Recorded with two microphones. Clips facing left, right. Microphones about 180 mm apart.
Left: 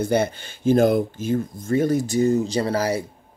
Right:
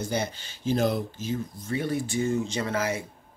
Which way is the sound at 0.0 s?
55° left (ahead or behind).